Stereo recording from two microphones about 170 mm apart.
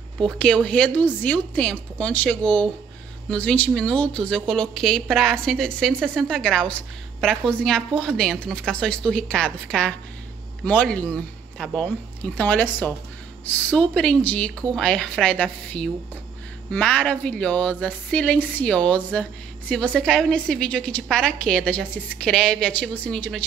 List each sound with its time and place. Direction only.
0.2 s a woman's voice: 5° left (ahead or behind)